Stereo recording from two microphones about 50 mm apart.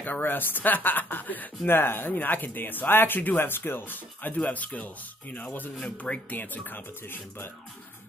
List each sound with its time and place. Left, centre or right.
0.0 s speech: left
1.7 s speech: left